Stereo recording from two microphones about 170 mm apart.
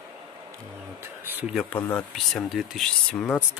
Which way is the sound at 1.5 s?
5° left (ahead or behind).